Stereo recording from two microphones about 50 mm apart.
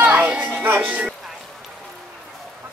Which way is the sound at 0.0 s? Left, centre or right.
Right.